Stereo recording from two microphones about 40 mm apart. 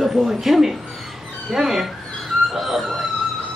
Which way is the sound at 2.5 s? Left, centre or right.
Centre.